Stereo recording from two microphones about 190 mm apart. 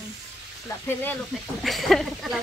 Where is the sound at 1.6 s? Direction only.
Centre (ahead or behind).